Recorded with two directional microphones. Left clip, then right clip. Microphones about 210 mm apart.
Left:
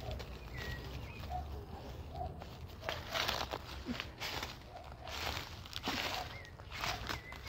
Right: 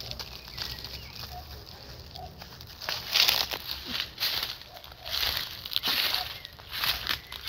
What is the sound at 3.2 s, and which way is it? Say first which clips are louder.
Crumpling: right 14 dB; 25° right (ahead or behind).